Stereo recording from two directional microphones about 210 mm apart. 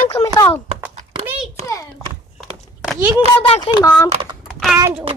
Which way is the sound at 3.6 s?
15° left (ahead or behind).